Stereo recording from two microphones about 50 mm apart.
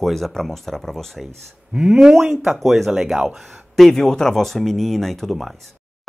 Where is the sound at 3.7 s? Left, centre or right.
Centre.